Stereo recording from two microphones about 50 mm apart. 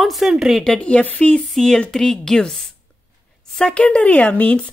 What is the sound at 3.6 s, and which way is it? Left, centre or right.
Speech, centre.